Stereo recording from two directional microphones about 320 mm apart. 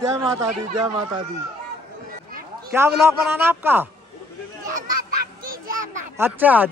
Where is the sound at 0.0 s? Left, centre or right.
Centre.